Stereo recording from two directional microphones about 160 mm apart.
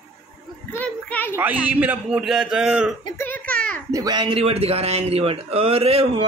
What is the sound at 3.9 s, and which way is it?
A man's voice, 25° right (ahead or behind).